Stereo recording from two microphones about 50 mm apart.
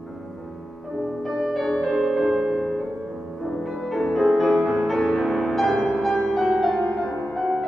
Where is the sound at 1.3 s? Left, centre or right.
Centre.